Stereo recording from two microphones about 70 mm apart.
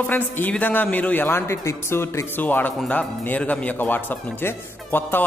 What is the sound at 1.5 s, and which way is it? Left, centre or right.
A man's voice, left.